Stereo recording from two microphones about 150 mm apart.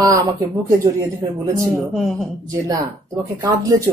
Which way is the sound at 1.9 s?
Centre (ahead or behind).